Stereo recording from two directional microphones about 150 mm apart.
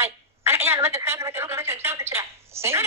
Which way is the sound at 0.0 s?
15° right (ahead or behind).